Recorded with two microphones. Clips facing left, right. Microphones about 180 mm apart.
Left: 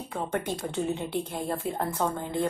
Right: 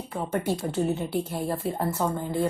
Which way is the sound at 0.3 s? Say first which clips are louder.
Right 6 dB; 5° right (ahead or behind).